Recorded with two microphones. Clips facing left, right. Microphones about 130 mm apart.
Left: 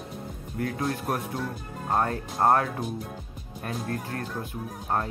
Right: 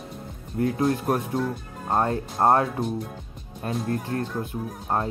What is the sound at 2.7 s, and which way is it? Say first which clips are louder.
Speech: right 4 dB; centre (ahead or behind).